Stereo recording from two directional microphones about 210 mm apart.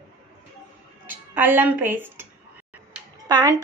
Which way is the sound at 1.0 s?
10° right (ahead or behind).